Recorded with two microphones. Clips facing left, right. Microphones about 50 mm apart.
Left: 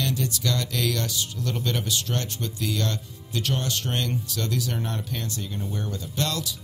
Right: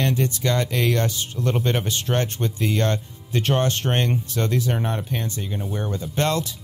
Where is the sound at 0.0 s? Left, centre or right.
Right.